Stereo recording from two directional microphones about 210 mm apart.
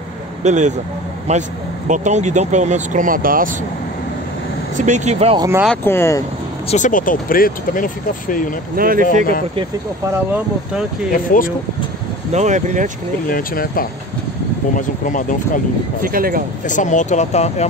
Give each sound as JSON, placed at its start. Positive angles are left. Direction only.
{"t": 0.4, "sound": "speech", "side_deg": -35}
{"t": 4.7, "sound": "speech", "side_deg": -35}
{"t": 5.4, "sound": "speech", "side_deg": -10}
{"t": 5.7, "sound": "speech", "side_deg": 10}
{"t": 6.7, "sound": "speech", "side_deg": 35}
{"t": 8.7, "sound": "speech", "side_deg": -45}
{"t": 10.3, "sound": "speech", "side_deg": -5}
{"t": 11.1, "sound": "speech", "side_deg": 40}
{"t": 12.3, "sound": "speech", "side_deg": -35}
{"t": 13.3, "sound": "speech", "side_deg": 45}
{"t": 16.0, "sound": "speech", "side_deg": -45}
{"t": 16.6, "sound": "speech", "side_deg": 35}